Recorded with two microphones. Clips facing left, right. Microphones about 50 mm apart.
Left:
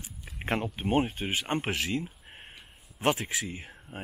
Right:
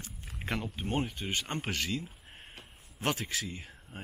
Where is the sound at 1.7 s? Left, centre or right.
Centre.